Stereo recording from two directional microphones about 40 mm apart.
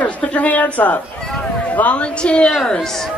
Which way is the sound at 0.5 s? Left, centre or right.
Left.